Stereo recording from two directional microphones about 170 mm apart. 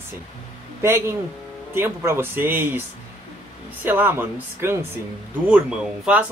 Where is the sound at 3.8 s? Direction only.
10° right (ahead or behind).